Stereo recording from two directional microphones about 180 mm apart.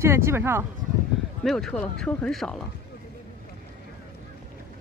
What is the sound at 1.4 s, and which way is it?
Speech, centre (ahead or behind).